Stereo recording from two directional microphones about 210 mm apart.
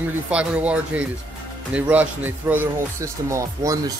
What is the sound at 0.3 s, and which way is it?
Speech, 5° right (ahead or behind).